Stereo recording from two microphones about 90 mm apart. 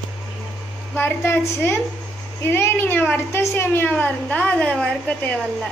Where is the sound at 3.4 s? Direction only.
30° left (ahead or behind).